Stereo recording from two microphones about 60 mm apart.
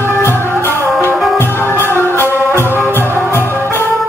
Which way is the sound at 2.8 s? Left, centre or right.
Left.